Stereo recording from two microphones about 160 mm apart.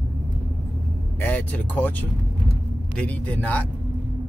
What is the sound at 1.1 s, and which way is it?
Speech, 10° left (ahead or behind).